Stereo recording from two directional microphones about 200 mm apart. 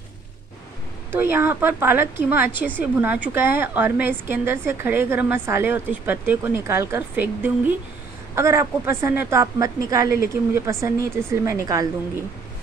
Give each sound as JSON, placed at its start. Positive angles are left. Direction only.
{"t": 1.1, "sound": "a woman's voice", "side_deg": -10}
{"t": 10.0, "sound": "speech", "side_deg": 50}
{"t": 10.5, "sound": "a woman's voice", "side_deg": -15}